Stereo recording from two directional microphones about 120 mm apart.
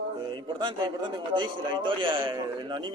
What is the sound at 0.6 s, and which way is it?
A man's voice, 40° right (ahead or behind).